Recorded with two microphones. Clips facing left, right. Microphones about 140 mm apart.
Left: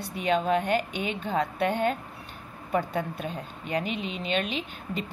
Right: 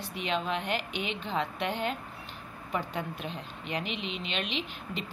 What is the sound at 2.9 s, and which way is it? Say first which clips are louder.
A woman's voice: left 5 dB; 35° left (ahead or behind).